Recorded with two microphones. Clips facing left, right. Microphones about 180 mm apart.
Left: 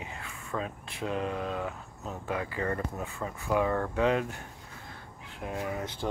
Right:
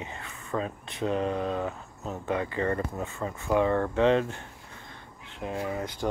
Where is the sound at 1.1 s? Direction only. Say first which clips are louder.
Right 4 dB; 35° right (ahead or behind).